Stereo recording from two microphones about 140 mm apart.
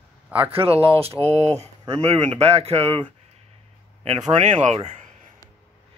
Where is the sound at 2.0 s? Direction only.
45° right (ahead or behind).